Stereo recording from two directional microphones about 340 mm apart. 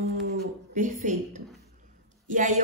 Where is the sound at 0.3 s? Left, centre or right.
Right.